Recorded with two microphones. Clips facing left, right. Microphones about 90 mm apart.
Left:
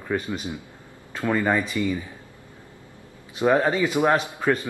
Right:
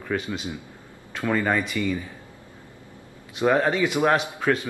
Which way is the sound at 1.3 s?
10° left (ahead or behind).